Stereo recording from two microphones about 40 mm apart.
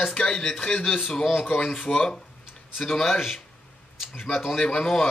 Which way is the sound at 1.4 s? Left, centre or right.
Left.